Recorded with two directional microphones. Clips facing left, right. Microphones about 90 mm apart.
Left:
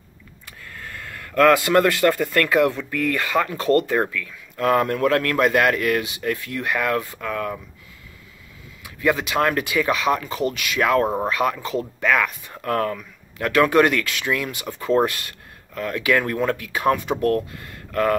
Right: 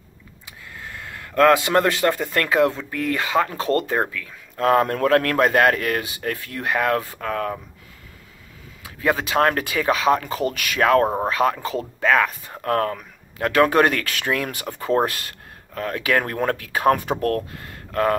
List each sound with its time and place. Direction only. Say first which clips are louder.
0.5 s speech: even; 15° right (ahead or behind); by 7.5 s 35° right (ahead or behind)
8.8 s speech: left 1 dB; 30° right (ahead or behind)
14.8 s speech: left 1 dB; 30° right (ahead or behind)
17.6 s a sound: even; 25° right (ahead or behind)